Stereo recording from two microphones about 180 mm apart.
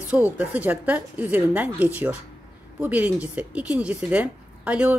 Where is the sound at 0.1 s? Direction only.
10° right (ahead or behind).